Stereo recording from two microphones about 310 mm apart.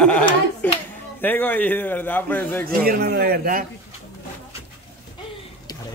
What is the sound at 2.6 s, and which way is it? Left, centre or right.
A man's voice, right.